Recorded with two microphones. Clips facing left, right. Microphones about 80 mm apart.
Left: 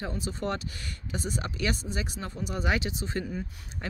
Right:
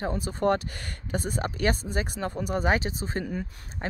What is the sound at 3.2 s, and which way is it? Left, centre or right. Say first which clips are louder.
Speech: right 3 dB; right.